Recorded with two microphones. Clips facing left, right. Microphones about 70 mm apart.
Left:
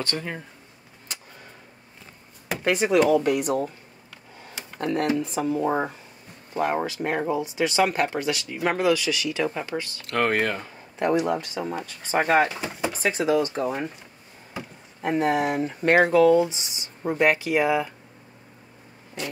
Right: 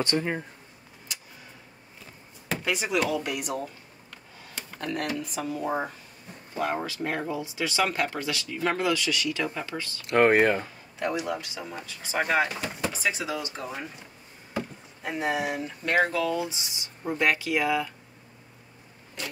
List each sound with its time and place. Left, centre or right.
0.0 s speech: centre
2.6 s speech: left
4.7 s speech: left
10.0 s speech: right
11.0 s speech: left
12.5 s speech: centre
13.0 s speech: left
15.0 s speech: left